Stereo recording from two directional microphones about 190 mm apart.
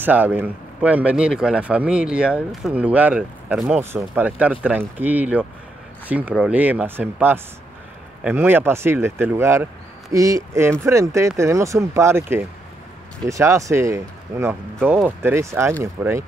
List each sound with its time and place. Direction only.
0.0 s speech: 10° right (ahead or behind)